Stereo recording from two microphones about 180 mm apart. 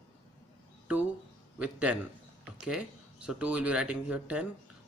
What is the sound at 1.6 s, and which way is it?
Speech, 5° right (ahead or behind).